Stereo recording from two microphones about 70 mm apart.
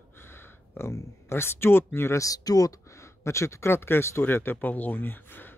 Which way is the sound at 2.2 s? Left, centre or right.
Left.